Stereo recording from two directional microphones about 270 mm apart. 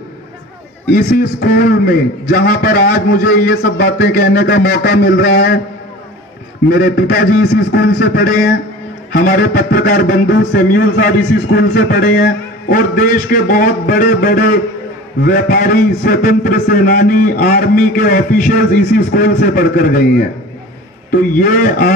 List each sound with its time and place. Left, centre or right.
0.9 s a man's voice: left
6.7 s a man's voice: left
21.4 s a man's voice: left